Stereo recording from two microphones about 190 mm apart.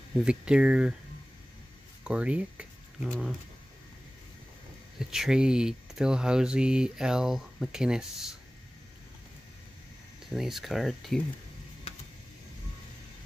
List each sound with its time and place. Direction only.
0.2 s speech: 5° right (ahead or behind)
2.0 s speech: 5° right (ahead or behind)
4.9 s speech: centre (ahead or behind)
10.3 s speech: centre (ahead or behind)